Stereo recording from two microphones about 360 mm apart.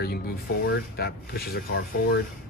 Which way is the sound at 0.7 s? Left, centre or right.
Left.